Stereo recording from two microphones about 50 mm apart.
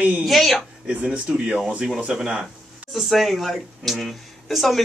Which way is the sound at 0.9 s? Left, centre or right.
Right.